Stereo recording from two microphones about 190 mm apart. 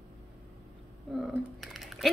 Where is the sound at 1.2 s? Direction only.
Centre (ahead or behind).